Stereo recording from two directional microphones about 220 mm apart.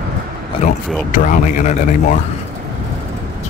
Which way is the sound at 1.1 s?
35° left (ahead or behind).